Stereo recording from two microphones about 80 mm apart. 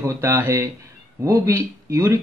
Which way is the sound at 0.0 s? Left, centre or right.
Right.